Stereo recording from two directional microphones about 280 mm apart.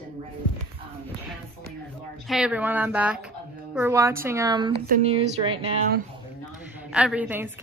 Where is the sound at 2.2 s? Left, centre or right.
Centre.